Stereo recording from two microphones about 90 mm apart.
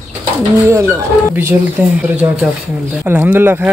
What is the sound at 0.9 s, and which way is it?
Speech, 25° right (ahead or behind).